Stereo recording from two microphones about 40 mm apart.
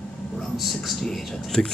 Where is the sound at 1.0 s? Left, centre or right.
Centre.